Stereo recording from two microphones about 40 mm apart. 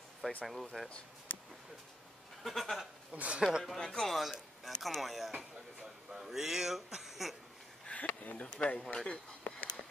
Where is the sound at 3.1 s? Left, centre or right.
Right.